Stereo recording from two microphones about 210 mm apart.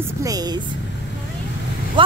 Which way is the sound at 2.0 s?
25° right (ahead or behind).